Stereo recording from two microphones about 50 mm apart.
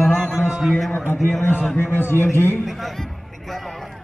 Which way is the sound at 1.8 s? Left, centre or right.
Left.